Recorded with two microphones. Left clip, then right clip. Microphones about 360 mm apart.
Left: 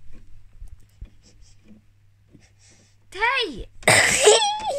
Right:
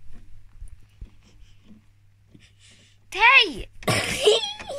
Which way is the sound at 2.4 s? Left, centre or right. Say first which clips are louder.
Right 3 dB; centre.